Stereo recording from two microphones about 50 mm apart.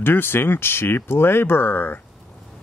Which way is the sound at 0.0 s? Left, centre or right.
Left.